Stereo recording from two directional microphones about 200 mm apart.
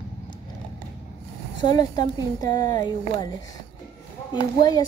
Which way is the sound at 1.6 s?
20° left (ahead or behind).